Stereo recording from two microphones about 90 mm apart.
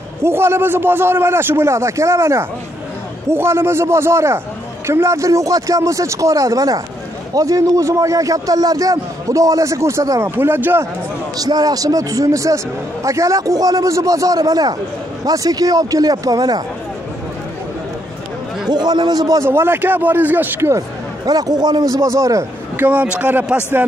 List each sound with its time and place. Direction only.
0.2 s a man's voice: 25° right (ahead or behind)
10.3 s a man's voice: 25° right (ahead or behind)
11.3 s a man's voice: 45° right (ahead or behind)
18.7 s a man's voice: 50° right (ahead or behind)
19.5 s a man's voice: 25° right (ahead or behind)
21.3 s a man's voice: 45° right (ahead or behind)
22.8 s a man's voice: 15° right (ahead or behind)